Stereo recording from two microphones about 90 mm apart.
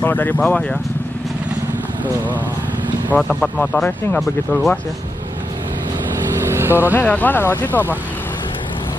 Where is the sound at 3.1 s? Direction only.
5° left (ahead or behind).